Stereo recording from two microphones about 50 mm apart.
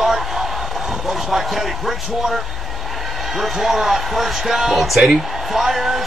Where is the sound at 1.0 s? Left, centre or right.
Centre.